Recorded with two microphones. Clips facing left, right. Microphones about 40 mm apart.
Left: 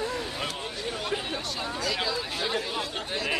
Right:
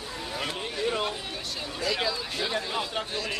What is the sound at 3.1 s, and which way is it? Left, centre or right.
Speech, centre.